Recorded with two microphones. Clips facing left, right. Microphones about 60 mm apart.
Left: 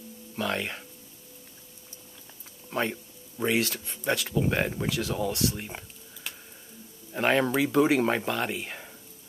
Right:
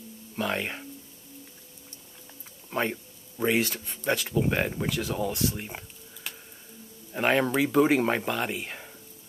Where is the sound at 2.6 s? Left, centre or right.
Centre.